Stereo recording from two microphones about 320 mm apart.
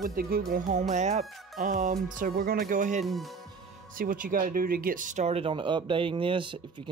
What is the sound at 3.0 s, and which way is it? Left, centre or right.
Speech, centre.